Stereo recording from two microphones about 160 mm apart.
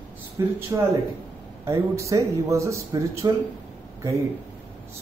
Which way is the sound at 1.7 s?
20° right (ahead or behind).